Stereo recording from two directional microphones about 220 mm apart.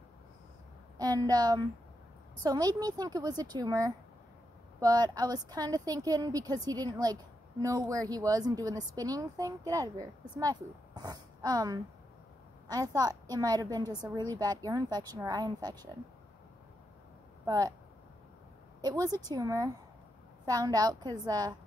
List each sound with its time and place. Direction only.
0.9 s a woman's voice: 15° right (ahead or behind)
17.5 s a woman's voice: 15° right (ahead or behind)
18.8 s a woman's voice: 15° right (ahead or behind)